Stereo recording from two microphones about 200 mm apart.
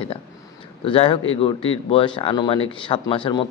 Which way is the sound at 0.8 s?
25° left (ahead or behind).